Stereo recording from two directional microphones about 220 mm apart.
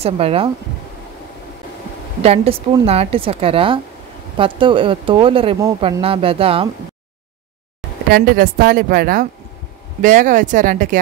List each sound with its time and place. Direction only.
0.0 s a woman's voice: 25° right (ahead or behind)
2.2 s a woman's voice: 25° right (ahead or behind)
8.1 s a woman's voice: 40° right (ahead or behind)